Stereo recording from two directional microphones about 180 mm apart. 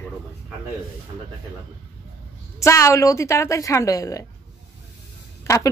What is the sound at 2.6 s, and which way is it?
A woman's voice, 15° left (ahead or behind).